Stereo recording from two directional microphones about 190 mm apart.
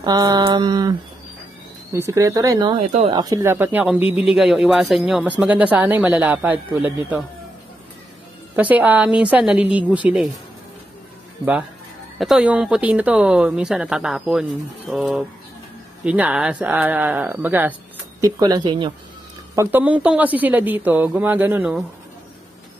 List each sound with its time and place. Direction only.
0.0 s a sound: 20° right (ahead or behind)
1.9 s speech: 15° right (ahead or behind)
2.7 s speech: 35° right (ahead or behind)
3.1 s speech: 20° right (ahead or behind)
8.5 s speech: 10° right (ahead or behind)
12.2 s speech: 5° right (ahead or behind)
18.2 s a sound: 20° right (ahead or behind)
19.5 s speech: 15° right (ahead or behind)